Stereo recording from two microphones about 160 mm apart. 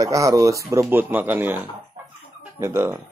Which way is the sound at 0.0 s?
20° right (ahead or behind).